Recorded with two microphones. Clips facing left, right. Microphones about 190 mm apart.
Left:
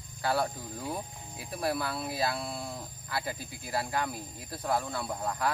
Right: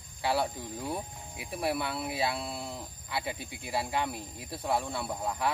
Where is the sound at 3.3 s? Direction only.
70° right (ahead or behind).